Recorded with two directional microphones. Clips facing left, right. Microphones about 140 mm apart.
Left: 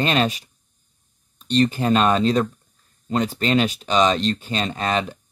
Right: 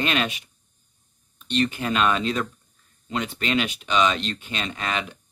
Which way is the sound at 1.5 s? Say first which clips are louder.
Left 6 dB; 35° left (ahead or behind).